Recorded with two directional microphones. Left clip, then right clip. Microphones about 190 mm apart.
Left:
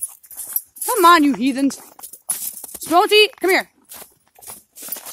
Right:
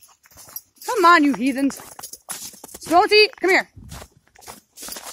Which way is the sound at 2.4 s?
40° right (ahead or behind).